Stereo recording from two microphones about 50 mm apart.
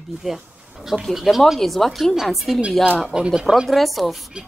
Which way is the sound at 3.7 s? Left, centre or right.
Centre.